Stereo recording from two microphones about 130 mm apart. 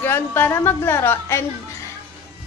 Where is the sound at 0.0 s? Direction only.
15° left (ahead or behind).